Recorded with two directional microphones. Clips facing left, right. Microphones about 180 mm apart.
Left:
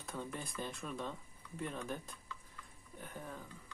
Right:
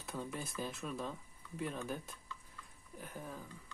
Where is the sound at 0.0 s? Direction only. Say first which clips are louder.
Right 1 dB; 5° right (ahead or behind).